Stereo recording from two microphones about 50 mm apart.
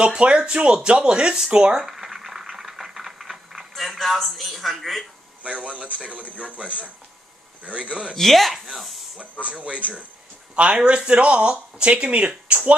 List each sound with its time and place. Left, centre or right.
0.0 s speech: centre
1.9 s boiling: centre
5.4 s speech: right
8.1 s speech: centre
9.4 s speech: right